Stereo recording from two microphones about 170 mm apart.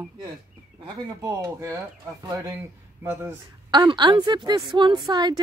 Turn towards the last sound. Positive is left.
turn(degrees=-25)  # may be behind; listen again after turning